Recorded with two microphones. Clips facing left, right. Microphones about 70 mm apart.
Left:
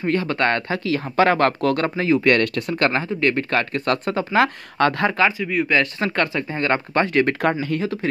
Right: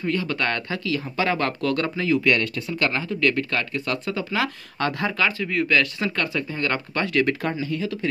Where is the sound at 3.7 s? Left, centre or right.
Left.